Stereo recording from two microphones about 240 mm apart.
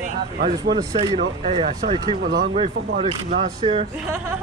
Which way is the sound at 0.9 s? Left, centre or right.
Right.